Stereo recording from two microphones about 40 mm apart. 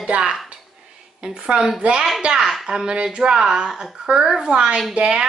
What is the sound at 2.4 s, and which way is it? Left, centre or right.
A woman's voice, centre.